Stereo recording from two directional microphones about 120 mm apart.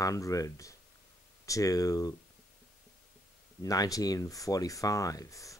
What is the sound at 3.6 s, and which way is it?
Speech, 30° left (ahead or behind).